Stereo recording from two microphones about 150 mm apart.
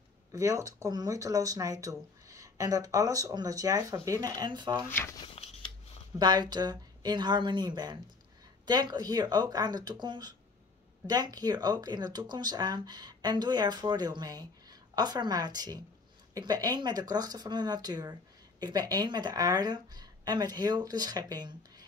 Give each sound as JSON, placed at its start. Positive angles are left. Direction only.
{"t": 0.3, "sound": "speech", "side_deg": -20}
{"t": 4.8, "sound": "speech", "side_deg": 15}
{"t": 5.2, "sound": "scissors", "side_deg": 40}
{"t": 6.1, "sound": "speech", "side_deg": -30}